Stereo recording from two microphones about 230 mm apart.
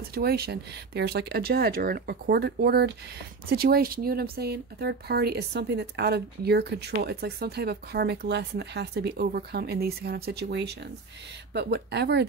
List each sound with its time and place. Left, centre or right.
0.1 s speech: right